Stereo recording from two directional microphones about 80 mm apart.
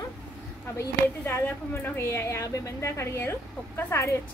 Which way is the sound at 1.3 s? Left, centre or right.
Left.